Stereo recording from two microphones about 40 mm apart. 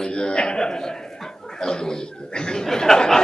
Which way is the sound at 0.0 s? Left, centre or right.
Centre.